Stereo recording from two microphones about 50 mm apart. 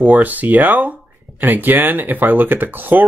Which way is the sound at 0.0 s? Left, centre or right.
Right.